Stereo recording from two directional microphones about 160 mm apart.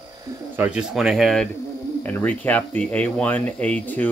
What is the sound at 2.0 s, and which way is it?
Speech, 10° left (ahead or behind).